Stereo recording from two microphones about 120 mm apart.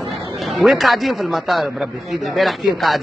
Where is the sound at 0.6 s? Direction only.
Centre (ahead or behind).